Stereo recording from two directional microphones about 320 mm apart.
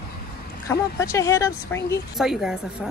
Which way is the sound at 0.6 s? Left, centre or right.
Centre.